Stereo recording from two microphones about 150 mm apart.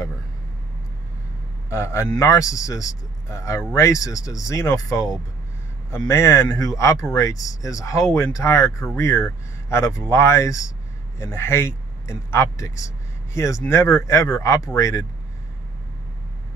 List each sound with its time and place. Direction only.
1.7 s speech: 20° left (ahead or behind)